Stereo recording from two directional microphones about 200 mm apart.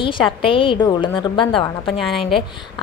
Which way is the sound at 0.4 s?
25° left (ahead or behind).